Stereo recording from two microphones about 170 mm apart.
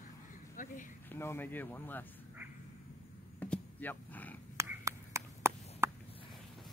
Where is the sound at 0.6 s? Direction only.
50° left (ahead or behind).